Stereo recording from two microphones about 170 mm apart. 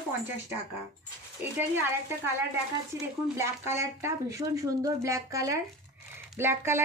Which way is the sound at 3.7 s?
15° right (ahead or behind).